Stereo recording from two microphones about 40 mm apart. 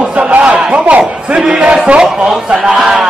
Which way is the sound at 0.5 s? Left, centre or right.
Right.